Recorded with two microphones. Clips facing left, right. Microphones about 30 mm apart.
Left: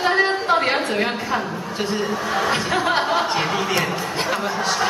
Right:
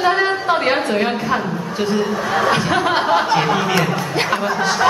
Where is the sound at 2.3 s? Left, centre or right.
Centre.